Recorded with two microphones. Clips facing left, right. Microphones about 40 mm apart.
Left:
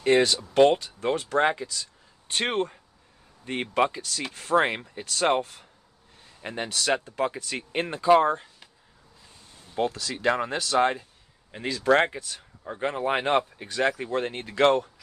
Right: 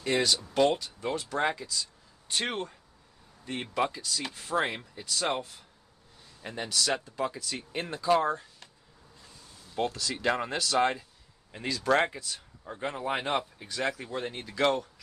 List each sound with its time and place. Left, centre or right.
0.0 s speech: left
3.7 s speech: left
4.6 s speech: left
6.4 s speech: left
9.8 s speech: centre
10.6 s speech: left